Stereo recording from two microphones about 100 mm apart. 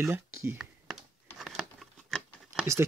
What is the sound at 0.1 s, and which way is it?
Speech, 25° right (ahead or behind).